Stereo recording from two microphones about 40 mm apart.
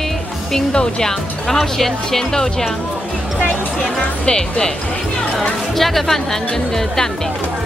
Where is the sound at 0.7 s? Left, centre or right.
Centre.